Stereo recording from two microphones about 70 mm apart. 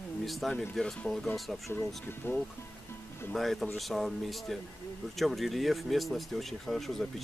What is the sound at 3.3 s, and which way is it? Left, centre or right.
Speech, centre.